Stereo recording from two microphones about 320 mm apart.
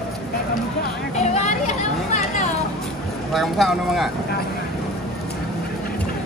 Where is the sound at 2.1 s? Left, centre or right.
Left.